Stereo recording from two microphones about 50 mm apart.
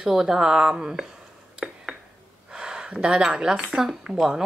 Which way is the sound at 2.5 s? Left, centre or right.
Centre.